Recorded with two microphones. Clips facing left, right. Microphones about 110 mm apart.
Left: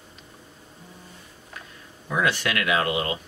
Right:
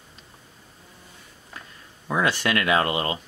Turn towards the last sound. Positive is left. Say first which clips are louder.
# right 2 dB
turn(degrees=-35)  # may be behind; listen again after turning